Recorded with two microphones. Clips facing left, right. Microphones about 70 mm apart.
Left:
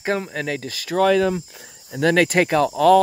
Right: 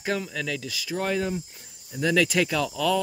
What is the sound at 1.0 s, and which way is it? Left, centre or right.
Speech, left.